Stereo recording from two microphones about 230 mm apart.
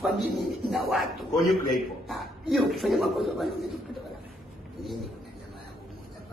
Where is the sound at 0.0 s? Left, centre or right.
Centre.